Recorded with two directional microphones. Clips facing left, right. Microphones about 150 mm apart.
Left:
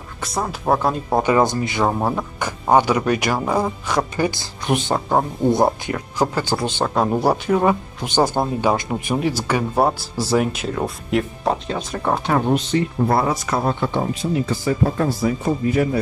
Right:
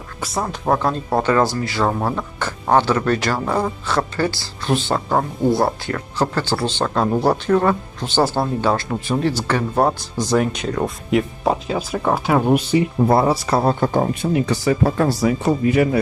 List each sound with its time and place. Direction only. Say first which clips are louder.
0.2 s speech: right 1 dB; centre (ahead or behind)
13.1 s speech: right 4 dB; 25° right (ahead or behind)
14.2 s speech: right 2 dB; 70° right (ahead or behind)